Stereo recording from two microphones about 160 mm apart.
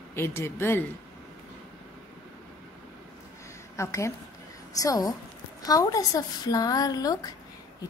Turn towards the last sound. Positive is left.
turn(degrees=25)  # may be behind; listen again after turning